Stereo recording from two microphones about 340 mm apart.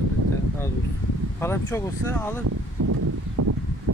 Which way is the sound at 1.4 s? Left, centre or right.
Centre.